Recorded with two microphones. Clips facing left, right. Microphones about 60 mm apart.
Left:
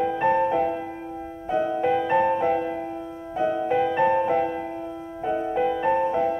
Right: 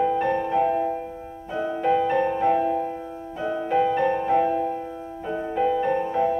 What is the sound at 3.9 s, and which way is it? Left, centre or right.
Music, centre.